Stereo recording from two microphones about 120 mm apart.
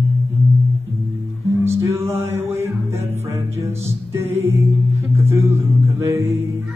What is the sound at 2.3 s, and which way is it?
Music, 20° right (ahead or behind).